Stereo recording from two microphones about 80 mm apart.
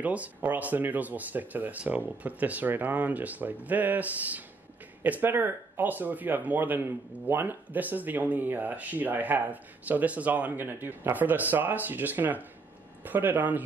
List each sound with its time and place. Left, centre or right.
0.0 s speech: centre